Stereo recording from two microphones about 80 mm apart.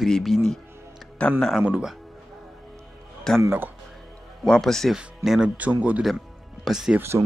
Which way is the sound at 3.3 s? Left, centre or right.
Centre.